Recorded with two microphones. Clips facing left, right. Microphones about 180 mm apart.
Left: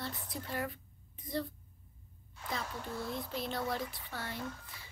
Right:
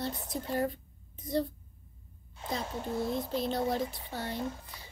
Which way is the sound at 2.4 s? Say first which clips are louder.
Right 5 dB; 25° right (ahead or behind).